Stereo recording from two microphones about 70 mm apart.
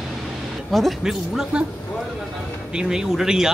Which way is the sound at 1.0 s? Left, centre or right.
Centre.